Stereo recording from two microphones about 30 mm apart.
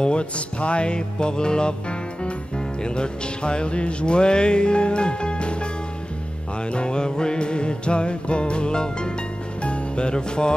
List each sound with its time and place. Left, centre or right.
0.0 s music: left
6.7 s music: left
9.6 s music: left